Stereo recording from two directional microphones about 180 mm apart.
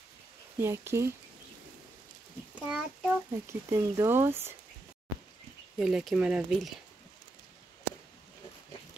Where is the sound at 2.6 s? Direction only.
5° right (ahead or behind).